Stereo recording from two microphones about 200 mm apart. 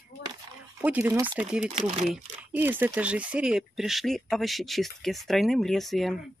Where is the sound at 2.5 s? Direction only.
10° right (ahead or behind).